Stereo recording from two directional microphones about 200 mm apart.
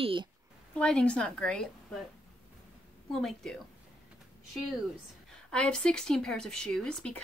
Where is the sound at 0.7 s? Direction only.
5° left (ahead or behind).